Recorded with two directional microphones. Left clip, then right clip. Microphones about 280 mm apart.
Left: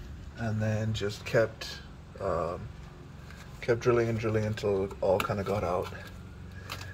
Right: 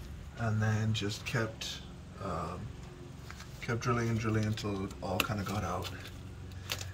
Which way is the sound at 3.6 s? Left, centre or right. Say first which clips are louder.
Left 8 dB; centre.